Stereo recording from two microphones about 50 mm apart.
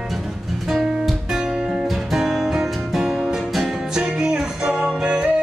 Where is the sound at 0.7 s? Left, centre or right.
Centre.